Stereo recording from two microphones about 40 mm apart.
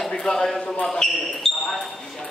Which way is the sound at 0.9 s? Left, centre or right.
Centre.